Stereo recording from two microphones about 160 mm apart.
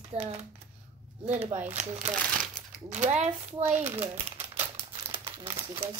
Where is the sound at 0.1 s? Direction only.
35° right (ahead or behind).